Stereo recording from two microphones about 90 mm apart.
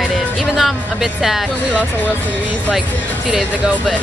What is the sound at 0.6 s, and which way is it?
Speech, 5° right (ahead or behind).